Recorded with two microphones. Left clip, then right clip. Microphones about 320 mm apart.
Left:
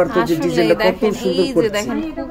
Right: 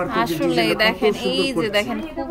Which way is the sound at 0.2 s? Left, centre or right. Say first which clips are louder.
Left 3 dB; centre.